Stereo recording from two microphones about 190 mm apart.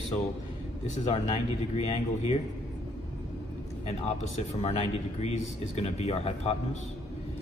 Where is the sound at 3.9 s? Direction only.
35° left (ahead or behind).